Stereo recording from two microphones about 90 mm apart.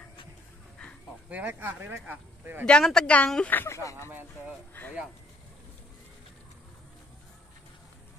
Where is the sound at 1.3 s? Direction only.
20° right (ahead or behind).